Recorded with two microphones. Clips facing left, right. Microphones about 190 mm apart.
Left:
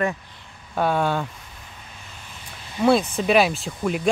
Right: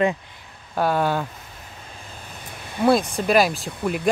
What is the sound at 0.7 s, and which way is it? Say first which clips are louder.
Speech: right 1 dB; 5° right (ahead or behind).